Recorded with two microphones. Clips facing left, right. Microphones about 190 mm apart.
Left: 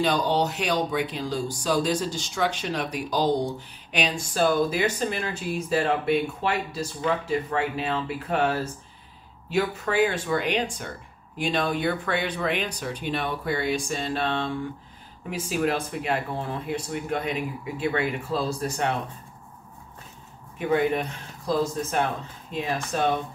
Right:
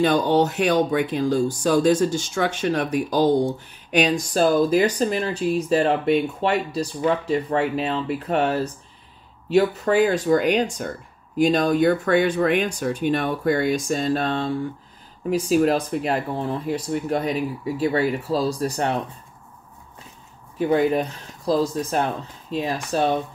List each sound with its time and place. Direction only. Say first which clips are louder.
0.0 s speech: right 5 dB; 50° right (ahead or behind); by 8.5 s 35° right (ahead or behind)
9.5 s speech: right 7 dB; 40° right (ahead or behind)
20.5 s speech: right 4 dB; 35° right (ahead or behind)